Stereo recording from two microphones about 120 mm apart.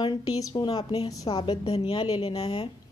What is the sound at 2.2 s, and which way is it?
Speech, 55° left (ahead or behind).